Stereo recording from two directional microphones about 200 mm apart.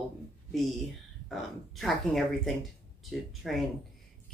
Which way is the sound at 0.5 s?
Centre (ahead or behind).